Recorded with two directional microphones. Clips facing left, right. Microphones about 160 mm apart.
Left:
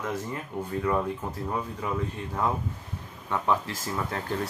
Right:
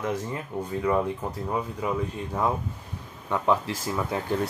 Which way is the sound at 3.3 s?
15° right (ahead or behind).